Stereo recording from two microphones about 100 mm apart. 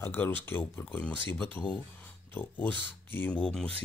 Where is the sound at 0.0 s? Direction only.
20° left (ahead or behind).